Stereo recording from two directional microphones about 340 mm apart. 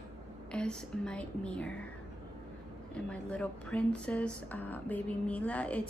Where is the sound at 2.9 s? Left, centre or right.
Centre.